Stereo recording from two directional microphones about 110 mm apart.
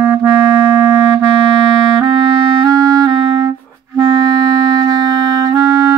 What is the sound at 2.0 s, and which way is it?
Clarinet, 40° right (ahead or behind).